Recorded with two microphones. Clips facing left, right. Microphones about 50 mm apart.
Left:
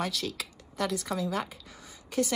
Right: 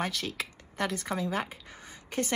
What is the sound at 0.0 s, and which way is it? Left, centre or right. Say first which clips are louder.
A woman's voice: even; right.